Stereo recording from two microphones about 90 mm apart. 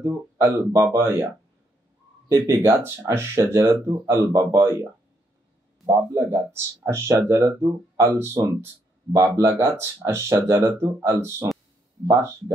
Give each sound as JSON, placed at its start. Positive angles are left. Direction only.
{"t": 0.0, "sound": "speech", "side_deg": -30}
{"t": 2.4, "sound": "speech", "side_deg": -30}
{"t": 5.9, "sound": "speech", "side_deg": -35}
{"t": 10.3, "sound": "speech", "side_deg": -40}
{"t": 10.8, "sound": "speech", "side_deg": -30}